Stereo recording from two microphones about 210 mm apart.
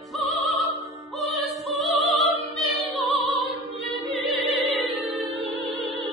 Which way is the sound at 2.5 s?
Centre (ahead or behind).